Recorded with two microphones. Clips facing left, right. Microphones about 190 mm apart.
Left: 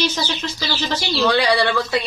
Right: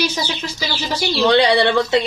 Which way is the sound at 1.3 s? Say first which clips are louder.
Right 4 dB; 25° right (ahead or behind).